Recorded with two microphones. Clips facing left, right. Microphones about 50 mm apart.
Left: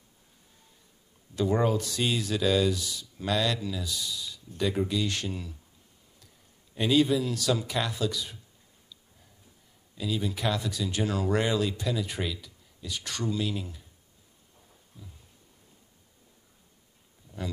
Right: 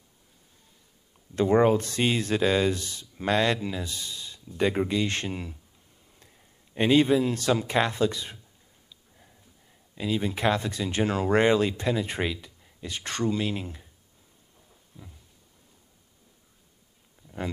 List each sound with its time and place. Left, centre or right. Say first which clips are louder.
1.3 s speech: right 5 dB; right
6.7 s speech: right 3 dB; right
9.9 s speech: right 3 dB; right